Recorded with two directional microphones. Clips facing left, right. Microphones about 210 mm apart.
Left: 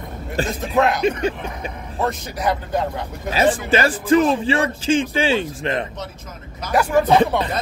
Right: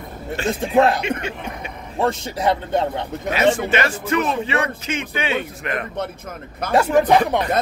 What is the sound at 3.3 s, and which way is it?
Speech, 35° left (ahead or behind).